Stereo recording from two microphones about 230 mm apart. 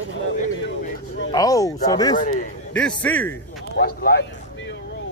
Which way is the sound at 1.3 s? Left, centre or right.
Centre.